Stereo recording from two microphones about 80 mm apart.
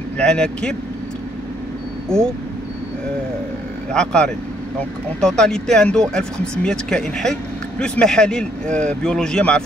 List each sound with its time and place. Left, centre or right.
0.2 s speech: centre
3.9 s speech: centre